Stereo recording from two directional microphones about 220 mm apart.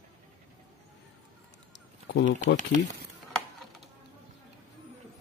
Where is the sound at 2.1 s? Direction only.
55° left (ahead or behind).